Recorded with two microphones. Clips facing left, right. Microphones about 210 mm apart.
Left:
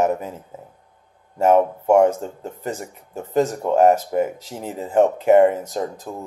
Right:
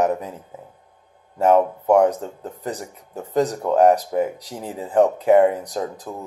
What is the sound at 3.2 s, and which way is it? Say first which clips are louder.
Speech: left 1 dB; 5° left (ahead or behind).